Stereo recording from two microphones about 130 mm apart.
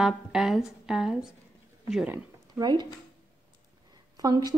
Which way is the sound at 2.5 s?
30° right (ahead or behind).